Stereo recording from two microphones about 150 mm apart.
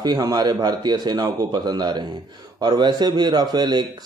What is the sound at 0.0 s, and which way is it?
A man's voice, 25° right (ahead or behind).